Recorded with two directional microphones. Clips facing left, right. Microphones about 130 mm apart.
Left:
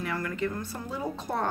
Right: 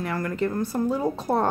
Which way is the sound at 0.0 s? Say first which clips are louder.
Right 5 dB; 40° right (ahead or behind).